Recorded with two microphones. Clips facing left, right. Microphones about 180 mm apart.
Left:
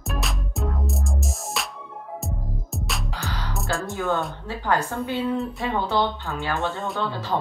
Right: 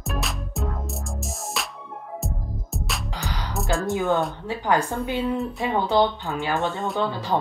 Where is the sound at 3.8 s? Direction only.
20° right (ahead or behind).